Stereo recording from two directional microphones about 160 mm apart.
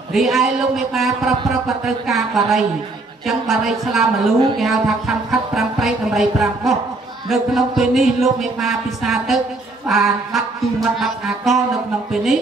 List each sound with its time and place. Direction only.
0.1 s a man's voice: centre (ahead or behind)
4.6 s music: centre (ahead or behind)
6.4 s a man's voice: centre (ahead or behind)